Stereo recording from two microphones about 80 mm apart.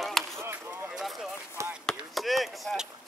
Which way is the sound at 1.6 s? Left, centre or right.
Right.